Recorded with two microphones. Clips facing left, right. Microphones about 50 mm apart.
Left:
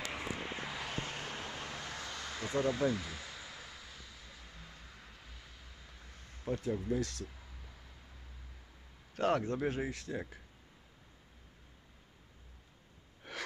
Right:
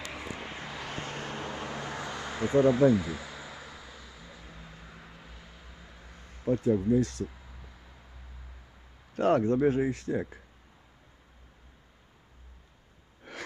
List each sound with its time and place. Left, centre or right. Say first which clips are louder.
0.0 s vehicle: right 1 dB; centre
6.5 s speech: right 10 dB; centre
9.1 s speech: right 7 dB; centre
9.4 s speech: right 10 dB; centre